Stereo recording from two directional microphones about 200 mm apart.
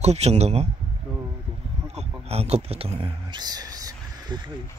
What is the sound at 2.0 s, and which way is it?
Speech, 30° right (ahead or behind).